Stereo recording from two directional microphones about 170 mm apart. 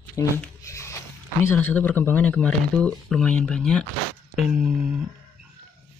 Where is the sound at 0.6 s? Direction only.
15° left (ahead or behind).